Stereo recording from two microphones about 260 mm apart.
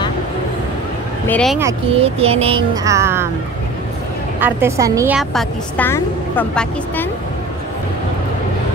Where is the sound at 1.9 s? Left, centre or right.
Right.